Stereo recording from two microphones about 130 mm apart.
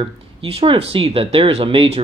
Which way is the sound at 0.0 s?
45° right (ahead or behind).